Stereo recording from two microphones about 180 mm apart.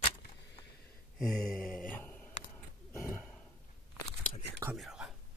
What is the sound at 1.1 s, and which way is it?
Speech, 5° left (ahead or behind).